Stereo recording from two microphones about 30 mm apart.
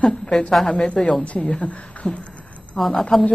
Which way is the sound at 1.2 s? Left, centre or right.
Left.